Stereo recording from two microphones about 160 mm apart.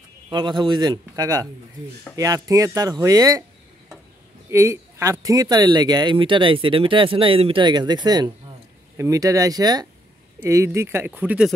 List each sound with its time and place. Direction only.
0.3 s speech: 30° right (ahead or behind)
4.5 s speech: 15° right (ahead or behind)